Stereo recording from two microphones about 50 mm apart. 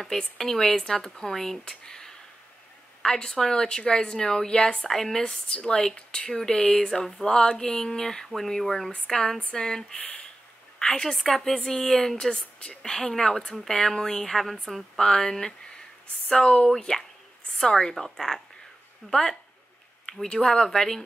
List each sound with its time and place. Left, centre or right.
0.0 s speech: centre
1.7 s a sound: centre
3.0 s a woman's voice: centre
15.0 s speech: centre
17.6 s speech: centre